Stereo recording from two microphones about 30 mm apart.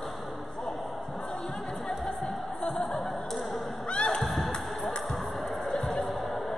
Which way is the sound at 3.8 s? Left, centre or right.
Left.